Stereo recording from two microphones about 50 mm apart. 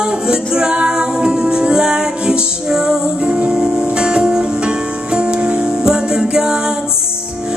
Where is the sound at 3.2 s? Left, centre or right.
Right.